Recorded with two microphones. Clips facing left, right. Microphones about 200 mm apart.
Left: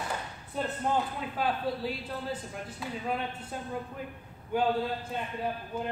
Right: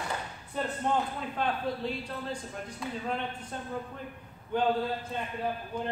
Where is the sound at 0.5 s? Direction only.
Centre (ahead or behind).